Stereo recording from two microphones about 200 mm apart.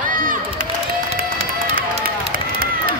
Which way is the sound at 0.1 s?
45° right (ahead or behind).